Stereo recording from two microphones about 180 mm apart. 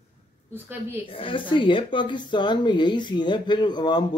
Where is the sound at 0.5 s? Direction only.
10° right (ahead or behind).